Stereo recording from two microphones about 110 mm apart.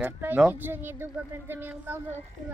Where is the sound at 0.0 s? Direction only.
15° right (ahead or behind).